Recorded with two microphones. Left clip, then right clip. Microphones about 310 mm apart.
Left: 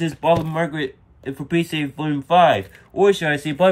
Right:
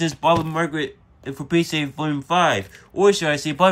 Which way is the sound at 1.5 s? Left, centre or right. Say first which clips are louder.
Right 1 dB; right.